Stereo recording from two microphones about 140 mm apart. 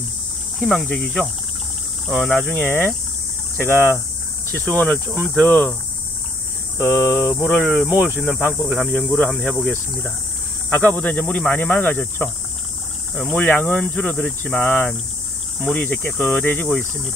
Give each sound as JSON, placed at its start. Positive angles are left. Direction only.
{"t": 0.6, "sound": "speech", "side_deg": 5}
{"t": 4.5, "sound": "speech", "side_deg": 10}
{"t": 6.8, "sound": "speech", "side_deg": 15}
{"t": 7.5, "sound": "speech", "side_deg": 5}
{"t": 7.9, "sound": "speech", "side_deg": -15}
{"t": 8.2, "sound": "speech", "side_deg": 15}
{"t": 8.6, "sound": "speech", "side_deg": 5}
{"t": 13.1, "sound": "speech", "side_deg": 0}
{"t": 13.4, "sound": "speech", "side_deg": 15}
{"t": 15.6, "sound": "speech", "side_deg": 10}